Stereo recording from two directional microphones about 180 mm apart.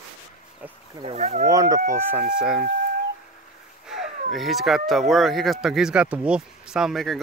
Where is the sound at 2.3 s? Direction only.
5° right (ahead or behind).